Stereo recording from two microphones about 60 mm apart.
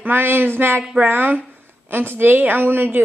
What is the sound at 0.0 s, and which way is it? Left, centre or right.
A woman's voice, right.